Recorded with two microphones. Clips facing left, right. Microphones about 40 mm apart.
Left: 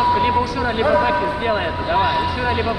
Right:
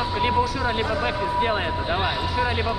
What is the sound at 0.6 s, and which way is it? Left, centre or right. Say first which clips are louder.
Speech: left 5 dB; centre.